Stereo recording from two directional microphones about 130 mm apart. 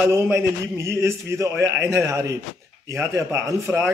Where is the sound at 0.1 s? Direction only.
20° right (ahead or behind).